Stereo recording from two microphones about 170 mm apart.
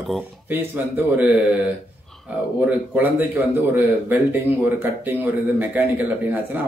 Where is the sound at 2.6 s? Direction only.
10° right (ahead or behind).